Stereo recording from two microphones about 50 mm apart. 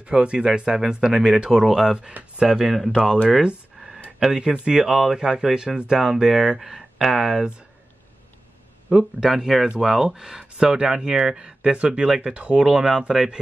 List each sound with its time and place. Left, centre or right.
0.0 s speech: right; by 2.9 s centre
4.2 s speech: centre
8.8 s speech: centre; by 12.6 s right
12.6 s speech: centre